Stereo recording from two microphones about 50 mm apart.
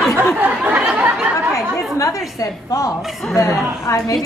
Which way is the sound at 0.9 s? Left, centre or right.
Centre.